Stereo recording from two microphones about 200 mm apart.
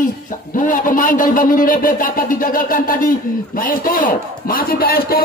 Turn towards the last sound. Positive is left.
turn(degrees=50)  # may be behind; listen again after turning